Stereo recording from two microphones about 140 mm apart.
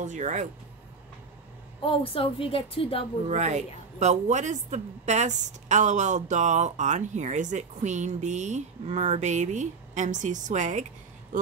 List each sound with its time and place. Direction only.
0.0 s a woman's voice: 60° right (ahead or behind)
1.9 s a woman's voice: 40° left (ahead or behind)
3.3 s a woman's voice: 55° right (ahead or behind)